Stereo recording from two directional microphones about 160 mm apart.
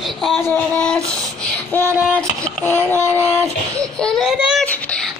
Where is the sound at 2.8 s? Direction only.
15° right (ahead or behind).